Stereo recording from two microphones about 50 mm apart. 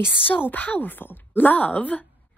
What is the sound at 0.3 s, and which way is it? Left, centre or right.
A woman's voice, left.